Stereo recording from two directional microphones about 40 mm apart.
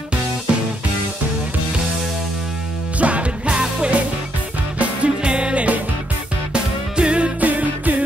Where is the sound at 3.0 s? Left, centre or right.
Right.